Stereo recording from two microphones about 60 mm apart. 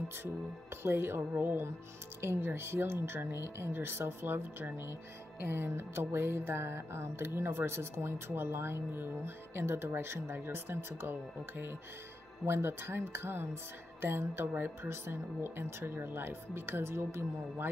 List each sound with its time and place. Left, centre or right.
0.8 s music: right